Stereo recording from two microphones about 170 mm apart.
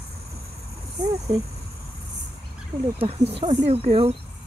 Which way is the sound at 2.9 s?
35° right (ahead or behind).